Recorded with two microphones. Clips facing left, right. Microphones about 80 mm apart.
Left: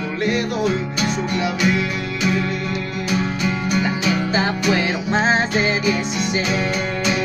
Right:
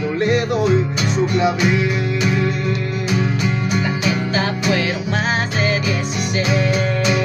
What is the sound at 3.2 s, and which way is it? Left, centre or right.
Music, centre.